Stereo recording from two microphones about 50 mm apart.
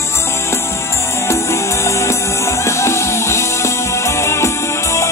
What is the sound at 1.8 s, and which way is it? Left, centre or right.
Music, left.